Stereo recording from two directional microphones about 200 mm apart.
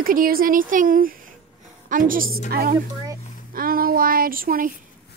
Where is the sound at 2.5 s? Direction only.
50° right (ahead or behind).